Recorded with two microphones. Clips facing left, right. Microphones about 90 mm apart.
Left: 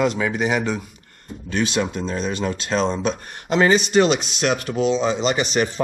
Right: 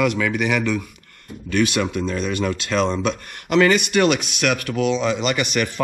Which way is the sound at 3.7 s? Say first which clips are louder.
Left 1 dB; 60° right (ahead or behind).